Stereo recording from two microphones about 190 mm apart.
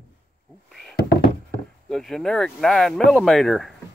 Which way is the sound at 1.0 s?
55° left (ahead or behind).